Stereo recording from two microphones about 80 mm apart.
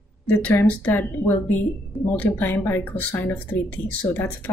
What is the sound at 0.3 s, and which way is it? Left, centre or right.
A woman's voice, left.